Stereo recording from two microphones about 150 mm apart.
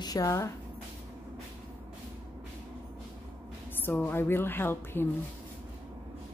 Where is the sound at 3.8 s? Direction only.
15° left (ahead or behind).